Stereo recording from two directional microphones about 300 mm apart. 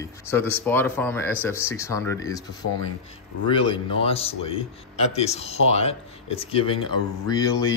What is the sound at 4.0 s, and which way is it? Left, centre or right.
Speech, centre.